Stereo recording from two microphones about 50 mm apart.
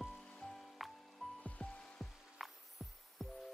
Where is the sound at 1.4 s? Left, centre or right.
Left.